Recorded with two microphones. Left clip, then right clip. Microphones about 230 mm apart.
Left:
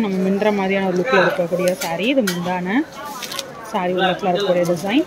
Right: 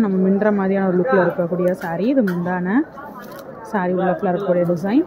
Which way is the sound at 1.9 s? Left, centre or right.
Centre.